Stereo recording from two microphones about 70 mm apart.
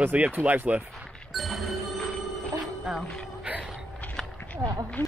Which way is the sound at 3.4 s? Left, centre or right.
Centre.